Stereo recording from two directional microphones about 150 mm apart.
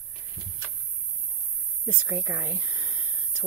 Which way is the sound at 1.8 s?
15° right (ahead or behind).